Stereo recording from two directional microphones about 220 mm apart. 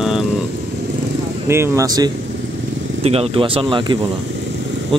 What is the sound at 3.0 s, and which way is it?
Speech, 25° right (ahead or behind).